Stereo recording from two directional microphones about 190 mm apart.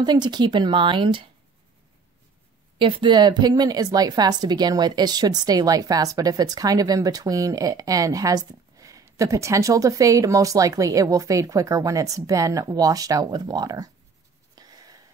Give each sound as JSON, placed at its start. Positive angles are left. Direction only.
{"t": 0.0, "sound": "speech", "side_deg": -25}
{"t": 2.8, "sound": "speech", "side_deg": -25}
{"t": 14.5, "sound": "a sound", "side_deg": -20}